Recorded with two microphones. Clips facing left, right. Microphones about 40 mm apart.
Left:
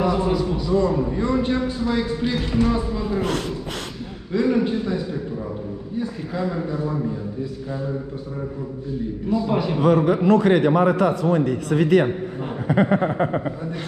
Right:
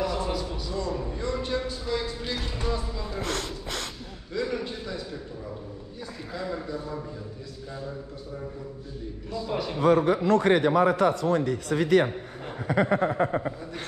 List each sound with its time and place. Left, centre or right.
0.0 s a sound: centre
0.8 s a man's voice: left
4.3 s a man's voice: left
9.3 s a man's voice: left
9.8 s a man's voice: left